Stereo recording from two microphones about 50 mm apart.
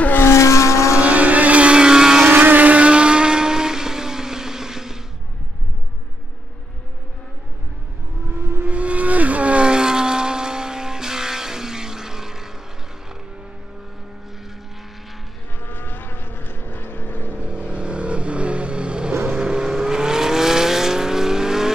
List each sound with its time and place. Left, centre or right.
0.2 s vehicle: left
0.9 s vehicle: right
2.2 s vehicle: right; by 5.0 s centre
8.4 s vehicle: right
8.6 s vehicle: right; by 12.5 s centre
15.6 s vehicle: left
17.5 s vehicle: right